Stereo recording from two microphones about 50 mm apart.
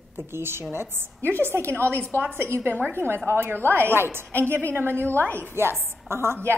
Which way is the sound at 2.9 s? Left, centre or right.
Right.